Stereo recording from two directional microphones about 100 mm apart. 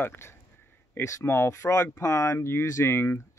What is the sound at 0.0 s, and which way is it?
Speech, 20° left (ahead or behind).